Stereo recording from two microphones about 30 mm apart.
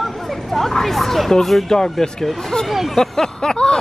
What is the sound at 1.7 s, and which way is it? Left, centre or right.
Speech, centre.